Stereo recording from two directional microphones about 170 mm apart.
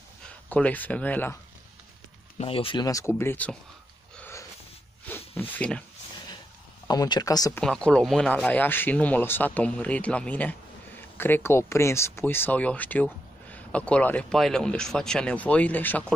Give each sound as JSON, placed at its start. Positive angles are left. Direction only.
{"t": 0.5, "sound": "speech", "side_deg": 10}
{"t": 2.3, "sound": "speech", "side_deg": 35}
{"t": 4.2, "sound": "snort", "side_deg": 15}
{"t": 5.3, "sound": "speech", "side_deg": 10}
{"t": 6.9, "sound": "speech", "side_deg": 25}
{"t": 7.6, "sound": "speech", "side_deg": 5}